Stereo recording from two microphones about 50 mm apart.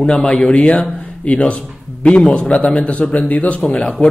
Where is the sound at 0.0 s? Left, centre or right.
Centre.